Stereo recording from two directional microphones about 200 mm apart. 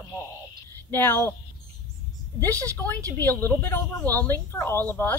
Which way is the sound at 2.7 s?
10° left (ahead or behind).